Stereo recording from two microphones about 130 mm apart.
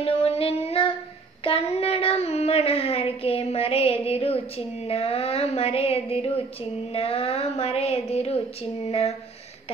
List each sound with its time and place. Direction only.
0.0 s child singing: 45° left (ahead or behind)
1.4 s speech: 45° left (ahead or behind)